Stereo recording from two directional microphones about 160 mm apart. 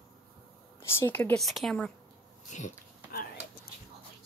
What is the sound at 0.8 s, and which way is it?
Speech, 15° left (ahead or behind).